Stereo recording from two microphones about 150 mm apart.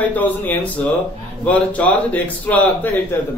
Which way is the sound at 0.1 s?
10° left (ahead or behind).